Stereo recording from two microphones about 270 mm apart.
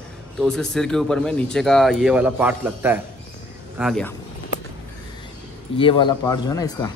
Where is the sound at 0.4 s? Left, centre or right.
Centre.